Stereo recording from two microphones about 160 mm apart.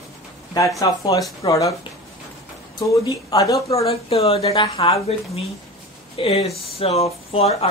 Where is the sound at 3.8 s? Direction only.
40° left (ahead or behind).